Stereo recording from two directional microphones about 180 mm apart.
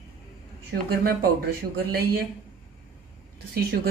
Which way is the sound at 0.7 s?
60° right (ahead or behind).